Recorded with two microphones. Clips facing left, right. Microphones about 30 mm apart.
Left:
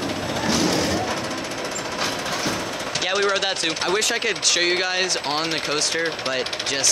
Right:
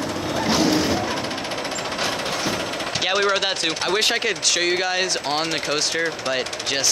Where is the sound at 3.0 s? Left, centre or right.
Centre.